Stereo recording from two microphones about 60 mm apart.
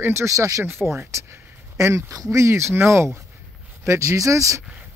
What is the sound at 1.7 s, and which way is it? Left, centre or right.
Speech, right.